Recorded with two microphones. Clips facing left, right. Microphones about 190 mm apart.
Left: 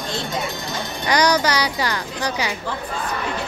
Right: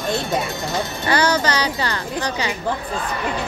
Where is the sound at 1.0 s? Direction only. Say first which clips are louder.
Left 1 dB; 15° left (ahead or behind).